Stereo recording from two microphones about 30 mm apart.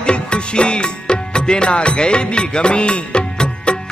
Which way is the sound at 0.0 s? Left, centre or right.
Left.